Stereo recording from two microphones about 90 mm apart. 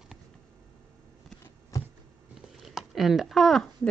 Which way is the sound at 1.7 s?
35° left (ahead or behind).